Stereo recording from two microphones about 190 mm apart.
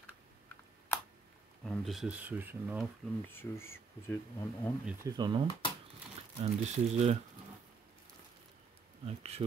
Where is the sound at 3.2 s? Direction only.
10° left (ahead or behind).